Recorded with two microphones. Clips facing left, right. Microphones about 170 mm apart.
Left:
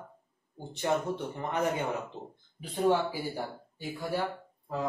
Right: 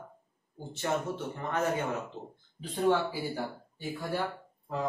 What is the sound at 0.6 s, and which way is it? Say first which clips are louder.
A man's voice: left 2 dB; 15° left (ahead or behind).